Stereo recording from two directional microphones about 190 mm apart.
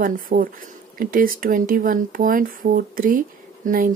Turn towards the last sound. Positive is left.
turn(degrees=-45)  # may be behind; listen again after turning